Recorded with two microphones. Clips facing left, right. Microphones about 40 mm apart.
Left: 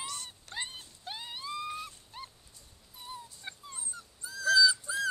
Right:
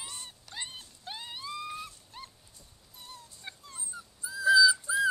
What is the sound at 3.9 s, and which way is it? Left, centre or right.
Dog, centre.